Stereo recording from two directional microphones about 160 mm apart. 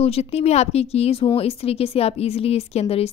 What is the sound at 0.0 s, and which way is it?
Speech, 40° left (ahead or behind).